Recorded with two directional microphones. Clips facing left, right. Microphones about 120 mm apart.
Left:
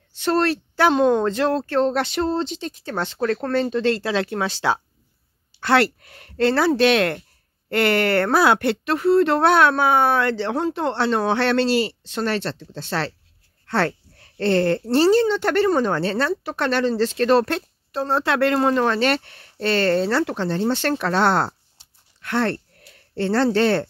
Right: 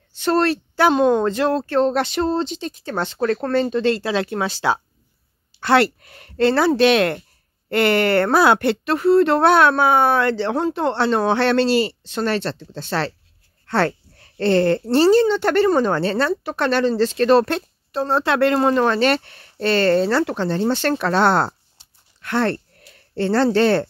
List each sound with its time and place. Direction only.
0.2 s speech: 40° right (ahead or behind)
0.7 s speech: 10° right (ahead or behind)
5.6 s speech: 20° right (ahead or behind); by 23.9 s 35° right (ahead or behind)